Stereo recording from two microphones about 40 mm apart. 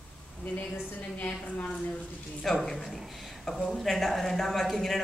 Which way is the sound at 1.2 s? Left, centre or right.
Left.